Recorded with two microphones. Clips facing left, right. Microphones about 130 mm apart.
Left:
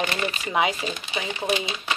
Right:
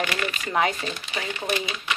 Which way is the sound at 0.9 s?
20° left (ahead or behind).